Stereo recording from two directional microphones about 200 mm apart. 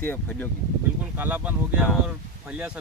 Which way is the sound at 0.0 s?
10° left (ahead or behind).